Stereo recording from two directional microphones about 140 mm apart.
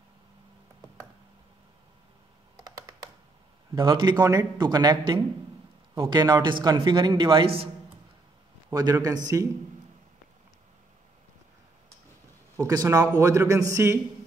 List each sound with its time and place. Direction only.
3.7 s speech: 35° right (ahead or behind)
8.7 s a man's voice: 25° right (ahead or behind)
12.5 s a man's voice: 25° right (ahead or behind)